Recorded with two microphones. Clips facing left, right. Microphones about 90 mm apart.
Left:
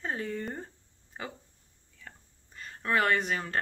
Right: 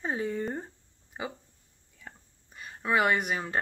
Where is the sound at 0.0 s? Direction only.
15° right (ahead or behind).